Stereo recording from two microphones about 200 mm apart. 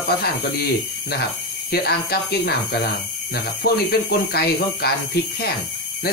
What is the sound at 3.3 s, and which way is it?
Speech, 50° left (ahead or behind).